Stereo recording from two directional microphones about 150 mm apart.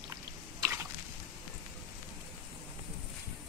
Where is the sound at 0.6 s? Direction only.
15° right (ahead or behind).